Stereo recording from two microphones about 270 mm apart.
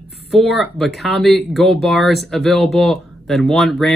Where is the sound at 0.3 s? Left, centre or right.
Centre.